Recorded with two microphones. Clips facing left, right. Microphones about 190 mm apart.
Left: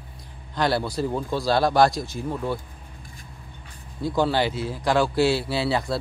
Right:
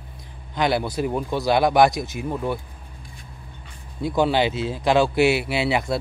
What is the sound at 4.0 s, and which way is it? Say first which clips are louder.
Speech: right 2 dB; 20° right (ahead or behind).